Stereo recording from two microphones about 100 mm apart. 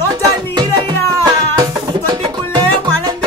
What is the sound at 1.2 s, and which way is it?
Music, 45° right (ahead or behind).